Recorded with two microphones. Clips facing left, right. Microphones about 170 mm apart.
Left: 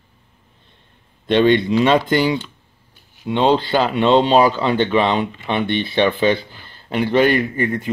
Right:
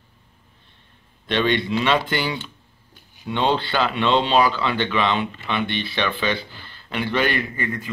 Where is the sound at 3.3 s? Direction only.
40° left (ahead or behind).